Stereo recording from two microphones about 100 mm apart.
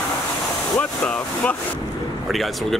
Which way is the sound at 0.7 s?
15° left (ahead or behind).